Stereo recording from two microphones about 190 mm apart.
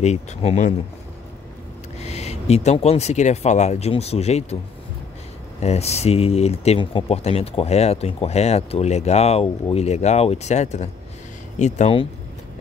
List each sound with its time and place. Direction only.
0.0 s speech: 35° left (ahead or behind)
2.0 s speech: 35° left (ahead or behind)
5.6 s speech: 35° left (ahead or behind)